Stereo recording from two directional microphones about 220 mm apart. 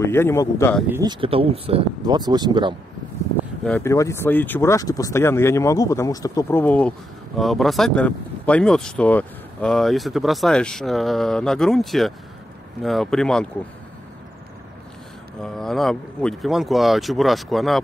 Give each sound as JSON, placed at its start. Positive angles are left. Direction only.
{"t": 0.0, "sound": "speech", "side_deg": 10}
{"t": 0.7, "sound": "speech", "side_deg": -10}
{"t": 1.0, "sound": "speech", "side_deg": -25}
{"t": 3.6, "sound": "speech", "side_deg": 10}
{"t": 15.4, "sound": "speech", "side_deg": 0}